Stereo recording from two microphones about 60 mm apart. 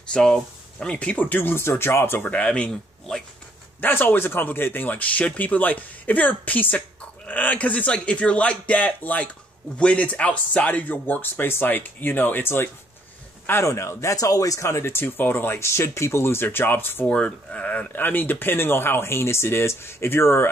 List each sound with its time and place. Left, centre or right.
0.1 s speech: centre; by 2.2 s left
2.2 s speech: centre
3.8 s speech: left
13.7 s speech: left
17.0 s speech: centre; by 20.4 s left